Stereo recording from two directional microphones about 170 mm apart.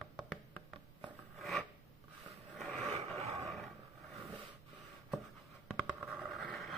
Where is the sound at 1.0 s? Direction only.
Centre (ahead or behind).